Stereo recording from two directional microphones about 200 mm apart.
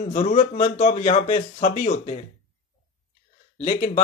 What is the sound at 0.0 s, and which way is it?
Speech, 30° left (ahead or behind).